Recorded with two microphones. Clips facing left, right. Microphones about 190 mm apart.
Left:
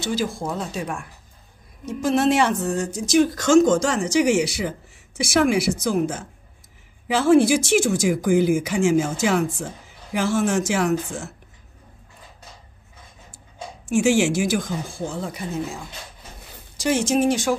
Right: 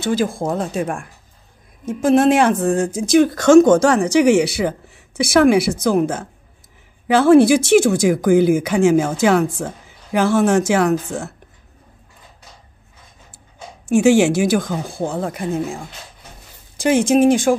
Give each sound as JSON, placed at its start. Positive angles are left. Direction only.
{"t": 0.0, "sound": "speech", "side_deg": -50}
{"t": 13.8, "sound": "speech", "side_deg": -65}